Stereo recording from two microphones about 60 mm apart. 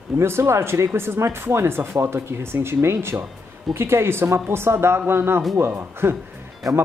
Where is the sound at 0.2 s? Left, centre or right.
Right.